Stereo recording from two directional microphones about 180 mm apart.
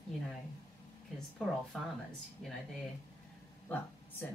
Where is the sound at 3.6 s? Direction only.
10° left (ahead or behind).